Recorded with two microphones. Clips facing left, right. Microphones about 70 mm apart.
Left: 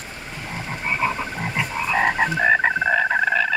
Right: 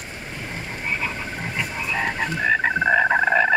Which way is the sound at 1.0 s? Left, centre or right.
Left.